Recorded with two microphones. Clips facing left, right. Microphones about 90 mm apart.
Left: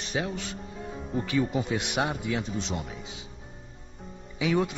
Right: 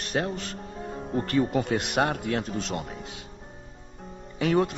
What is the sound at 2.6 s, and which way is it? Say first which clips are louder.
Speech: right 2 dB; centre (ahead or behind).